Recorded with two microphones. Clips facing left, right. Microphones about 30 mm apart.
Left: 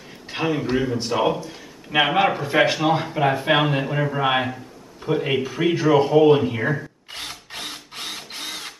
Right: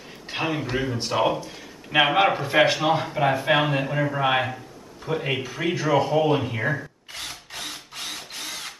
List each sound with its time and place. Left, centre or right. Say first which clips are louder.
0.3 s a man's voice: left 4 dB; centre
7.1 s drill: left 2 dB; centre